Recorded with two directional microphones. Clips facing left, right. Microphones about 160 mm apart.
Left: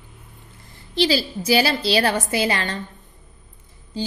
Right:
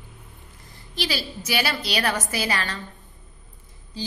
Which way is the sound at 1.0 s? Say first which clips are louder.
Left 9 dB; 30° left (ahead or behind).